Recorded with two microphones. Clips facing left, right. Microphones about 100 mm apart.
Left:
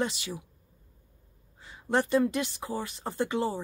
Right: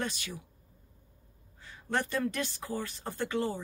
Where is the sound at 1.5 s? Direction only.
20° left (ahead or behind).